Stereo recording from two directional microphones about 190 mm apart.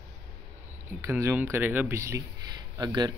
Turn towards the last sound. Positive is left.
turn(degrees=-20)  # may be behind; listen again after turning